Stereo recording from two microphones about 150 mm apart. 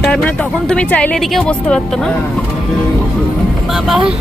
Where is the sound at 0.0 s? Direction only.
5° left (ahead or behind).